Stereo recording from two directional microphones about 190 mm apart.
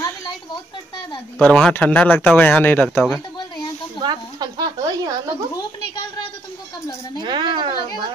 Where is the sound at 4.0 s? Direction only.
20° right (ahead or behind).